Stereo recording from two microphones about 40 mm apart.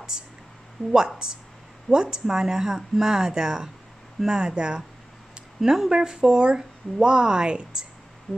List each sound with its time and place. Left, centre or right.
0.1 s a sound: centre
0.9 s speech: right
5.6 s speech: centre
5.9 s speech: centre